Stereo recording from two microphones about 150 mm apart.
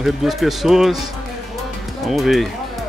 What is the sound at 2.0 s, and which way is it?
Speech, centre (ahead or behind).